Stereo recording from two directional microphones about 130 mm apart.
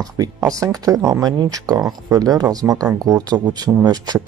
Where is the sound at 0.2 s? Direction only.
25° right (ahead or behind).